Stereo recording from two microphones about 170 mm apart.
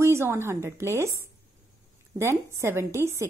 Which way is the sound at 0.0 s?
15° right (ahead or behind).